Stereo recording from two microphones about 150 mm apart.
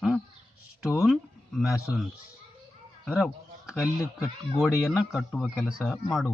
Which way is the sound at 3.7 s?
20° left (ahead or behind).